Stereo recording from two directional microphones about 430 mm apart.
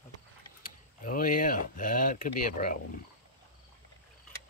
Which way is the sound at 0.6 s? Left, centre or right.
Centre.